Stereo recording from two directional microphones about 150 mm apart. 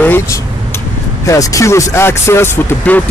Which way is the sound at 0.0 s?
15° left (ahead or behind).